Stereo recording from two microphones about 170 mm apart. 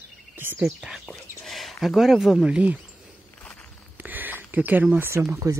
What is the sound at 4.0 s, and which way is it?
Speech, 10° right (ahead or behind).